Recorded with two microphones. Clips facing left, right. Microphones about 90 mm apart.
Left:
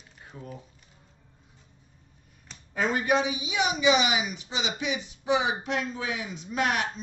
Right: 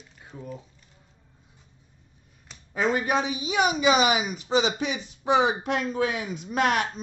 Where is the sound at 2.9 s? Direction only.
35° right (ahead or behind).